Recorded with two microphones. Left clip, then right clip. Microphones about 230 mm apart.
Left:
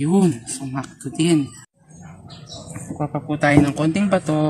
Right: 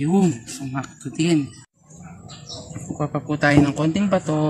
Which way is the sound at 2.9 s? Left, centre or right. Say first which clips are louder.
Left 1 dB; centre.